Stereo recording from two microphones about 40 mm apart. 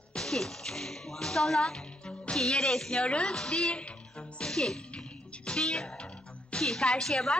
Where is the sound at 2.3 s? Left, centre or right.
Centre.